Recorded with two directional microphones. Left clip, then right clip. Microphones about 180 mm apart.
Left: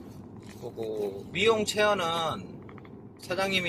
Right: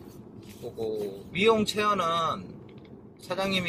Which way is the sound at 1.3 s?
Centre (ahead or behind).